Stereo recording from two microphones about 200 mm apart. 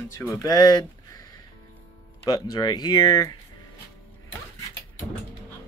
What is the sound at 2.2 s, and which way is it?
Speech, 20° left (ahead or behind).